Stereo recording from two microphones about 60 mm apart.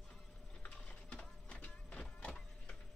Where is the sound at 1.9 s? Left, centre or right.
Centre.